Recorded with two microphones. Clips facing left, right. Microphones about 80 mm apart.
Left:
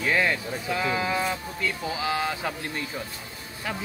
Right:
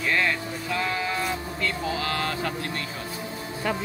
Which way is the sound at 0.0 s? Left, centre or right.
Centre.